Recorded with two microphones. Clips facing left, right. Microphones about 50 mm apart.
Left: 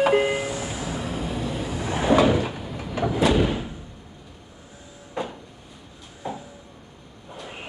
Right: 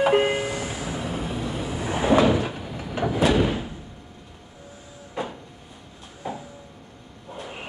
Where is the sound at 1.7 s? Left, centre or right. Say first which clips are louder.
Even; centre.